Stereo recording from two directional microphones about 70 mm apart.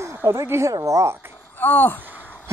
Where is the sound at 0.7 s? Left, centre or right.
Right.